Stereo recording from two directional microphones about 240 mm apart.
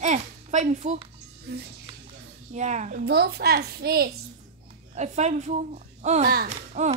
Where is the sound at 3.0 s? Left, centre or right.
Right.